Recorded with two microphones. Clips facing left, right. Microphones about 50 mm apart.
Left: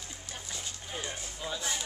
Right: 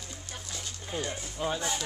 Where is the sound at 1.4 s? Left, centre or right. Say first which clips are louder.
Right 6 dB; right.